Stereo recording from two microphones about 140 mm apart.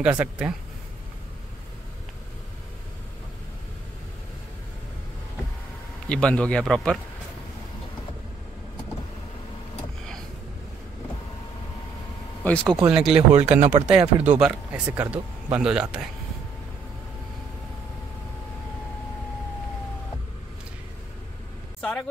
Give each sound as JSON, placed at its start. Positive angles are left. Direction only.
{"t": 0.0, "sound": "speech", "side_deg": -10}
{"t": 6.0, "sound": "speech", "side_deg": 5}
{"t": 12.4, "sound": "speech", "side_deg": 10}
{"t": 12.8, "sound": "speech", "side_deg": -5}
{"t": 13.3, "sound": "speech", "side_deg": -50}
{"t": 13.8, "sound": "speech", "side_deg": -10}